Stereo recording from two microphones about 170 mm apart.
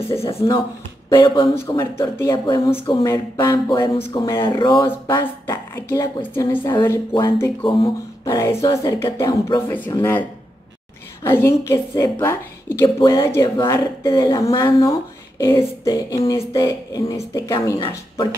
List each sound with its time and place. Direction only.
1.1 s speech: 25° left (ahead or behind)
2.3 s a woman's voice: 30° left (ahead or behind)
11.2 s a woman's voice: 15° left (ahead or behind)